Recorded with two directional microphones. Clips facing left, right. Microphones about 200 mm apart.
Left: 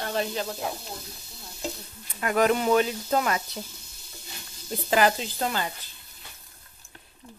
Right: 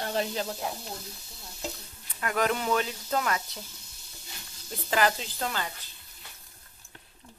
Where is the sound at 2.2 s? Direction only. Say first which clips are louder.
Left 5 dB; 15° left (ahead or behind).